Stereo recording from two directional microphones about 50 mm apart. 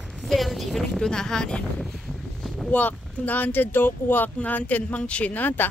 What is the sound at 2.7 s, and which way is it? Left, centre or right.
Speech, left.